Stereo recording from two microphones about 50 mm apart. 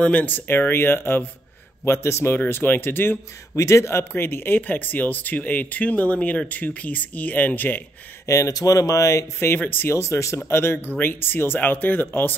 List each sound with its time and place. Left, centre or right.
0.0 s speech: left
0.5 s speech: left
1.9 s a man's voice: left
2.3 s speech: left
3.5 s speech: left
4.1 s speech: left
8.3 s speech: left
9.7 s speech: left
9.9 s speech: left
10.5 s speech: left